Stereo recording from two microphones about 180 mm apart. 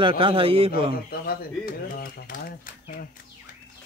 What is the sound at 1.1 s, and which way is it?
Speech, 55° left (ahead or behind).